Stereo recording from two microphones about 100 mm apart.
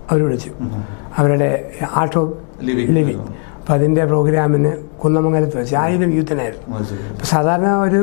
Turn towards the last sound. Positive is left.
turn(degrees=20)  # may be behind; listen again after turning